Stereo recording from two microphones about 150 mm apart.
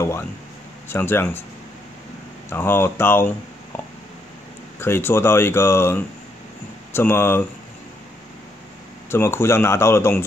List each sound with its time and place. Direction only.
0.0 s speech: 15° left (ahead or behind)
2.5 s speech: 15° left (ahead or behind)
9.1 s speech: 15° left (ahead or behind)